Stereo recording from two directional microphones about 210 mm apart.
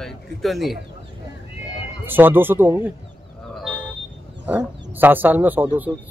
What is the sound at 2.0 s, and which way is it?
Speech, 10° right (ahead or behind).